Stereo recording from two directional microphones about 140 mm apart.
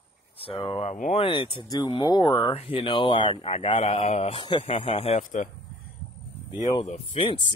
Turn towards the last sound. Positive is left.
turn(degrees=40)  # may be behind; listen again after turning